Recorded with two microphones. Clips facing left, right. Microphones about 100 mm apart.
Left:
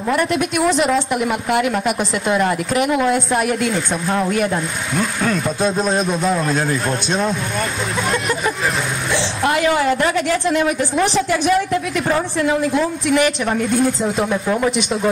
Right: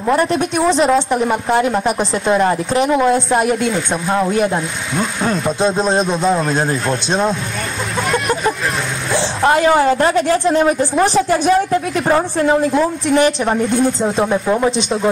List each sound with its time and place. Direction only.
0.1 s a woman's voice: 30° right (ahead or behind)
5.6 s a woman's voice: 30° right (ahead or behind)
8.1 s vehicle: 35° right (ahead or behind)
9.1 s a woman's voice: 35° right (ahead or behind)